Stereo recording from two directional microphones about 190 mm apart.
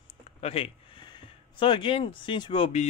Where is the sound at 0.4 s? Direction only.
30° left (ahead or behind).